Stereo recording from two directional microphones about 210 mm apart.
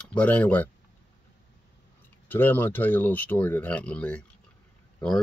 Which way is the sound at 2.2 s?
10° left (ahead or behind).